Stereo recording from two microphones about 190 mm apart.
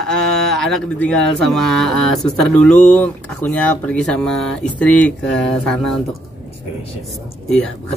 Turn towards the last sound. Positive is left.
turn(degrees=5)  # may be behind; listen again after turning